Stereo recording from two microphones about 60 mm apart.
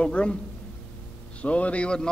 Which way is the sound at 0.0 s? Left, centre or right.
Centre.